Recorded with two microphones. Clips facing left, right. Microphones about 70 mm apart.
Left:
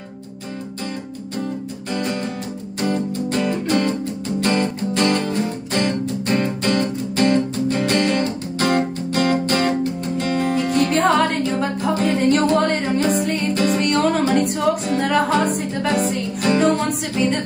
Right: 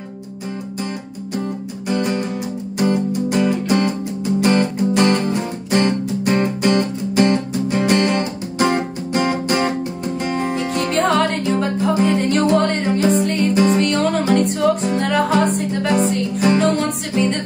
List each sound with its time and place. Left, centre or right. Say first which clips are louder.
1.9 s music: right 4 dB; centre
10.6 s music: left 2 dB; centre